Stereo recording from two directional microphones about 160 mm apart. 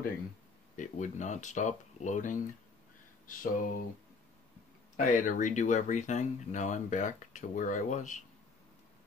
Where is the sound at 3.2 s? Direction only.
60° left (ahead or behind).